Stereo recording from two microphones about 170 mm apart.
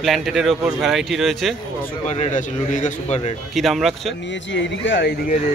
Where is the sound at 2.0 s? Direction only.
45° left (ahead or behind).